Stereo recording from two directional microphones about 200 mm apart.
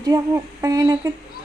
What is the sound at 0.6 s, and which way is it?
Speech, 15° right (ahead or behind).